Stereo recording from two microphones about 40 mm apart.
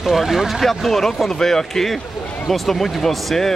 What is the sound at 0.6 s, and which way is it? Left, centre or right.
Speech, centre.